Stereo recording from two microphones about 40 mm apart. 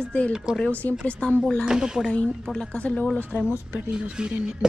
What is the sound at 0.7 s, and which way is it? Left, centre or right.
Speech, left.